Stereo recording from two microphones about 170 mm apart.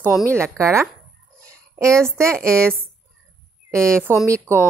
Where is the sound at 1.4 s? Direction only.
15° right (ahead or behind).